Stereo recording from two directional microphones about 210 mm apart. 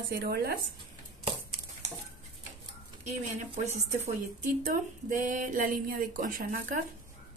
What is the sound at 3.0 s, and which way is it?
Speech, 35° right (ahead or behind).